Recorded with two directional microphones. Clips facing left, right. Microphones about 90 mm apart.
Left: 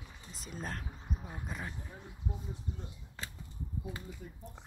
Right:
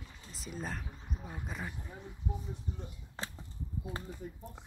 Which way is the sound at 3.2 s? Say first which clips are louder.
Right 2 dB; 35° right (ahead or behind).